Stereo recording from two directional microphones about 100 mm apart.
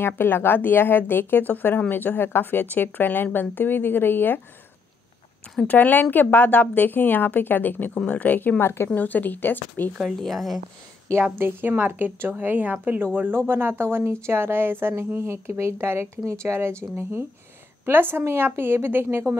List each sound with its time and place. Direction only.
0.2 s a woman's voice: 20° left (ahead or behind)
5.6 s a woman's voice: 15° left (ahead or behind)
9.9 s speech: centre (ahead or behind)
11.3 s a woman's voice: 20° right (ahead or behind)